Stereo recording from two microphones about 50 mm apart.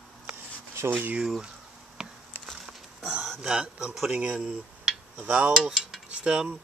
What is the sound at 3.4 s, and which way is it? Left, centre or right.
Cutlery, centre.